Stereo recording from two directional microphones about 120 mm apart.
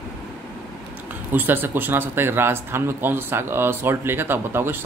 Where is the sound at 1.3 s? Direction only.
15° right (ahead or behind).